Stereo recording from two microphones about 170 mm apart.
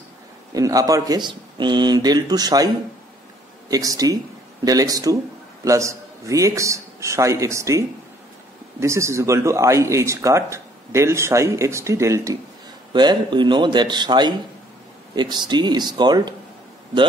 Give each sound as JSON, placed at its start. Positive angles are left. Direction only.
{"t": 0.6, "sound": "a man's voice", "side_deg": -20}